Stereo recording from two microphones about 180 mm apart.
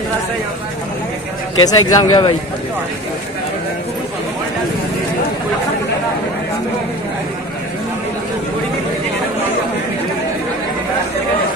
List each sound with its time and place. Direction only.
1.6 s a man's voice: 25° left (ahead or behind)